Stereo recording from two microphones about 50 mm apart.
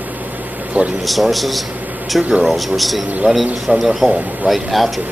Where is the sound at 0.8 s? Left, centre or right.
Right.